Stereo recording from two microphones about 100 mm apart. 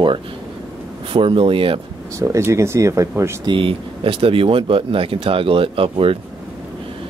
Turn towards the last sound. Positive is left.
turn(degrees=-65)  # may be behind; listen again after turning